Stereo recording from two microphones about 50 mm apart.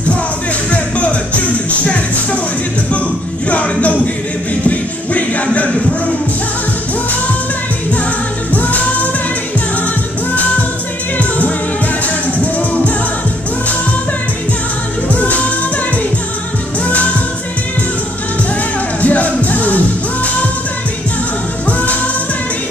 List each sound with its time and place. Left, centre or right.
0.7 s music: left
3.4 s music: left
8.5 s music: left
11.1 s music: left
12.5 s music: left
15.0 s music: left
18.9 s music: left
21.6 s music: left